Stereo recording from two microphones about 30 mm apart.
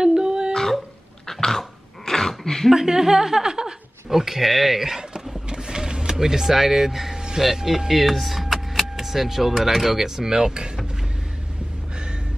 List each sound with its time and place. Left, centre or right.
0.0 s a sound: right
1.2 s cough: centre
1.6 s dog: centre
2.7 s a woman's voice: centre
4.1 s a woman's voice: centre
5.5 s vehicle: right
6.1 s a woman's voice: centre
7.9 s power windows: centre
9.7 s speech: centre
10.0 s speech: centre